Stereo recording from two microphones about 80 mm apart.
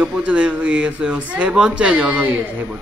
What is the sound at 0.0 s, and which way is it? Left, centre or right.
Speech, centre.